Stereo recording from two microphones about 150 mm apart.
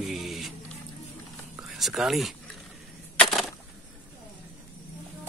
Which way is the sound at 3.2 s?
Centre (ahead or behind).